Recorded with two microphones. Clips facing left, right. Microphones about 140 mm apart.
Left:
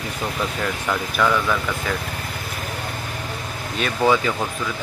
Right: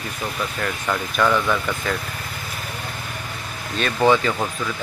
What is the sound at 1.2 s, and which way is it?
Speech, centre (ahead or behind).